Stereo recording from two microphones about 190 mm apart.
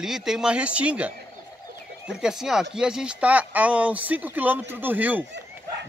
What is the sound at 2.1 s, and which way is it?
Speech, 5° right (ahead or behind).